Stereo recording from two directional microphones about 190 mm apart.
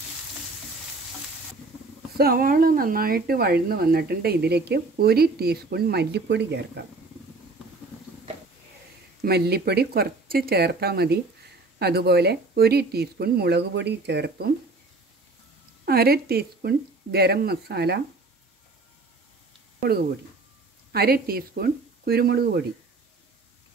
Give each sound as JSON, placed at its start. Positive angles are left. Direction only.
{"t": 2.1, "sound": "speech", "side_deg": -50}
{"t": 9.2, "sound": "speech", "side_deg": -55}
{"t": 15.8, "sound": "speech", "side_deg": -55}
{"t": 20.9, "sound": "speech", "side_deg": -55}